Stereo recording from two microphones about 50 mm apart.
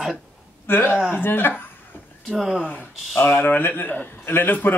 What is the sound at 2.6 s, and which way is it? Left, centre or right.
Speech, left.